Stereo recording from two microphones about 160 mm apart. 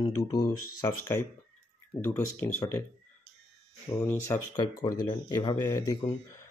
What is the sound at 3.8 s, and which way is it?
Speech, 15° left (ahead or behind).